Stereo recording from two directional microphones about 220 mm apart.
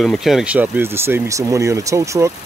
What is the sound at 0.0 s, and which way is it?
Speech, centre (ahead or behind).